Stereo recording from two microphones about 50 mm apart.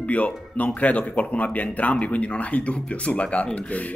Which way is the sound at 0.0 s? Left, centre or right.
Left.